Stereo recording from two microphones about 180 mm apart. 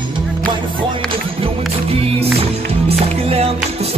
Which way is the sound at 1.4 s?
30° right (ahead or behind).